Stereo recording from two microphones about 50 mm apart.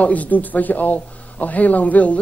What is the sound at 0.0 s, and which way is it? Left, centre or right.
Speech, left.